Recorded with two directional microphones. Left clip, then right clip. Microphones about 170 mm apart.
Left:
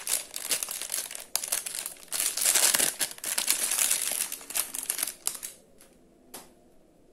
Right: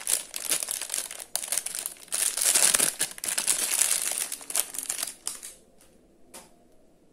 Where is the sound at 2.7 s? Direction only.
15° right (ahead or behind).